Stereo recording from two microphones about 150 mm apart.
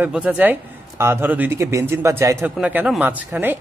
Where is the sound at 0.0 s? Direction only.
10° right (ahead or behind).